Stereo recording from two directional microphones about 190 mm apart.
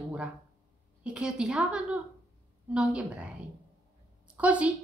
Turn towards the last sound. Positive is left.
turn(degrees=-5)  # may be behind; listen again after turning